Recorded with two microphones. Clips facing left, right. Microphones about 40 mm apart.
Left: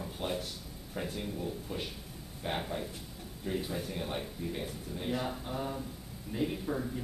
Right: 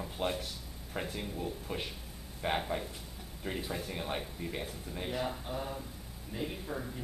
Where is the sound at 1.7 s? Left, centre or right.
Right.